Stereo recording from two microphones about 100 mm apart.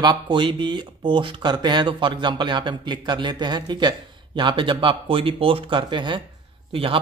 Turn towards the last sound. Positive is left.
turn(degrees=-65)  # may be behind; listen again after turning